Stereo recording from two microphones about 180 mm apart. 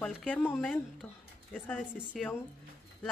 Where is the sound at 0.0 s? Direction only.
5° left (ahead or behind).